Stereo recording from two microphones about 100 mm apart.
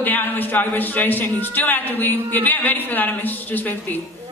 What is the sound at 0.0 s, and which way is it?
A woman's voice, 20° left (ahead or behind).